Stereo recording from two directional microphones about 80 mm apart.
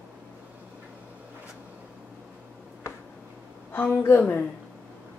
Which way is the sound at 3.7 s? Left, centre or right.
Left.